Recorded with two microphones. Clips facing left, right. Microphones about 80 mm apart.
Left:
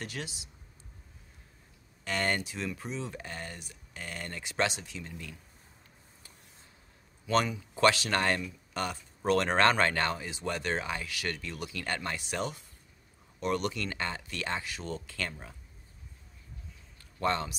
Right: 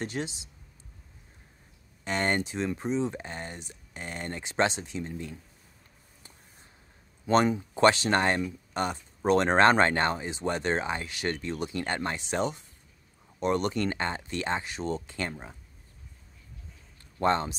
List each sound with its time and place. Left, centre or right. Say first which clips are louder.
0.0 s speech: right 6 dB; right
2.0 s speech: right 3 dB; right
7.2 s speech: right 5 dB; right
17.0 s a man's voice: right 5 dB; right